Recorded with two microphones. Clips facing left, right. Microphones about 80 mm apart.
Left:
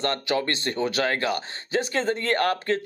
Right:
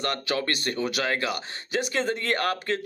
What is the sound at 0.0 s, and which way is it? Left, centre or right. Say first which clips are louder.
Speech: left 3 dB; left.